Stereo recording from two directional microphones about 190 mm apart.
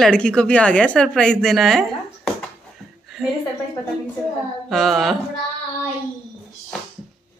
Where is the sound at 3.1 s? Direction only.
Centre (ahead or behind).